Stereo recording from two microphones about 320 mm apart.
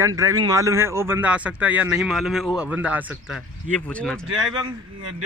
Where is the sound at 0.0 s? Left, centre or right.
Centre.